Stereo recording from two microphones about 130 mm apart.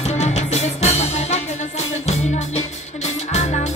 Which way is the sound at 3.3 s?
60° left (ahead or behind).